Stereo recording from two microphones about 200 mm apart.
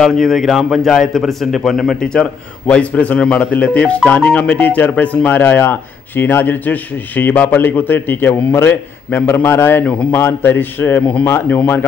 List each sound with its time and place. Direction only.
0.0 s a man's voice: centre (ahead or behind)